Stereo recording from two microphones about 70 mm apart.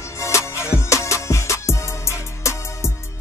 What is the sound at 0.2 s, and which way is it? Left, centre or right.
Music, left.